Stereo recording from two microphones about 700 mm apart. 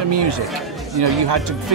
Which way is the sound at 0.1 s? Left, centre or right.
Right.